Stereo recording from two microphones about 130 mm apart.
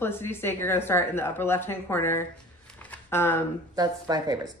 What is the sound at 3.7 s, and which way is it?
Speech, 30° right (ahead or behind).